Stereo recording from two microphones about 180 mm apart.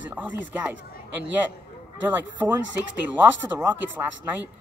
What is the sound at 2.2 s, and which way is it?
Speech, 10° right (ahead or behind).